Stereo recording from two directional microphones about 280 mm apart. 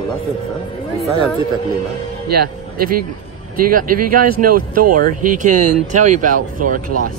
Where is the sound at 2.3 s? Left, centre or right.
Right.